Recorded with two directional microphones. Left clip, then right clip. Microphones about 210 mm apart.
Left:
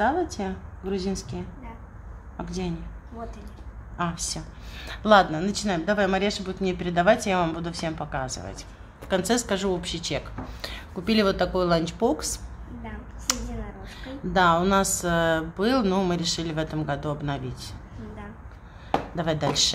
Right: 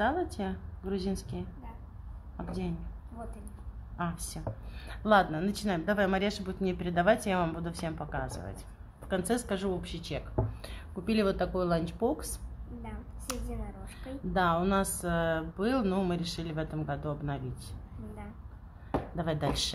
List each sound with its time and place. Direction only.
0.0 s speech: 5° right (ahead or behind)
4.0 s speech: centre (ahead or behind)
13.3 s finger snapping: 5° left (ahead or behind)
14.3 s speech: 5° left (ahead or behind)
19.1 s speech: 5° right (ahead or behind)